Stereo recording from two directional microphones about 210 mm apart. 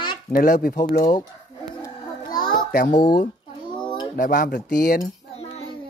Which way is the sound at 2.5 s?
40° left (ahead or behind).